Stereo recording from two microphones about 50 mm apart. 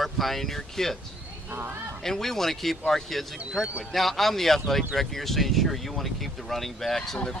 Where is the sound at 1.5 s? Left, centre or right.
Right.